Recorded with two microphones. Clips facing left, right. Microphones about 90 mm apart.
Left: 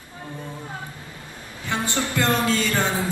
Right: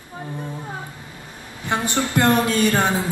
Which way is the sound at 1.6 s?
20° right (ahead or behind).